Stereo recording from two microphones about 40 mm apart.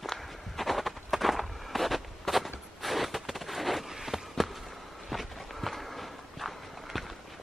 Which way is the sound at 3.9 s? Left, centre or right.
Centre.